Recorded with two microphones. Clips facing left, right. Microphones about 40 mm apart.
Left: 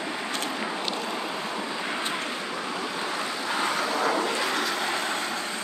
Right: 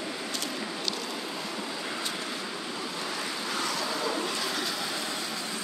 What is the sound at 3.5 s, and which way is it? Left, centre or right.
Vehicle, left.